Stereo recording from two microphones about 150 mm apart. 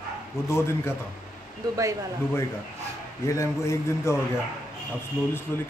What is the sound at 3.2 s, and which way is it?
Speech, 20° left (ahead or behind).